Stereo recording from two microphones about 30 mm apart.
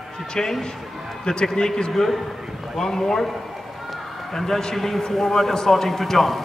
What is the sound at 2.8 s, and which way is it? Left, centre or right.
Speech, centre.